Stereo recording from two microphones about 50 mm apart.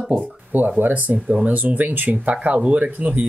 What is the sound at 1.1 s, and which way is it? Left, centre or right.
Speech, right.